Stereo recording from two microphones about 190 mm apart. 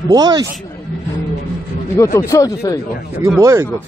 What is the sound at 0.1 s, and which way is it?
Speech, 20° right (ahead or behind).